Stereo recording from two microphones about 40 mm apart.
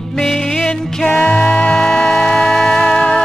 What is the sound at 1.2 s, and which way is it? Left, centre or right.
Music, left.